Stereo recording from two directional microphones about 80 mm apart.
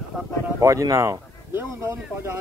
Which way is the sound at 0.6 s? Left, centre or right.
Right.